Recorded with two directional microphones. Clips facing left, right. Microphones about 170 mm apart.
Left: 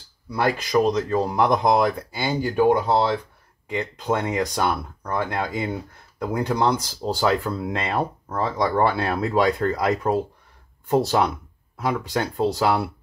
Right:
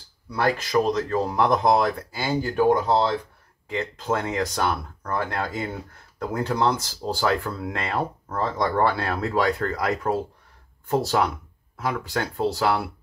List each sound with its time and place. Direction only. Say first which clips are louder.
0.4 s speech: left 2 dB; 15° left (ahead or behind)